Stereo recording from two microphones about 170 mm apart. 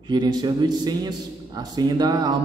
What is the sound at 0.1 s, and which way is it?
A man's voice, 25° right (ahead or behind).